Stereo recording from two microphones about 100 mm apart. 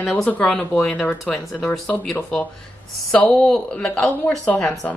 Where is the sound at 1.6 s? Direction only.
15° left (ahead or behind).